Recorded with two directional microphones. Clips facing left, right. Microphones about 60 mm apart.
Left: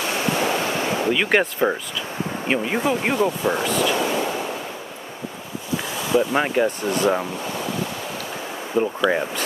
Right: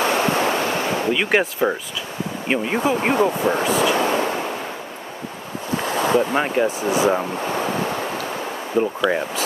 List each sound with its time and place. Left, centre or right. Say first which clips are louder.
0.0 s waves: right 4 dB; right
1.1 s speech: even; centre
2.9 s speech: right 3 dB; centre
3.3 s speech: right 2 dB; right
3.9 s speech: right 3 dB; right
5.8 s ocean: right 3 dB; right
6.3 s speech: even; centre
6.8 s speech: right 2 dB; centre
7.3 s waves: right 4 dB; right
8.7 s speech: even; centre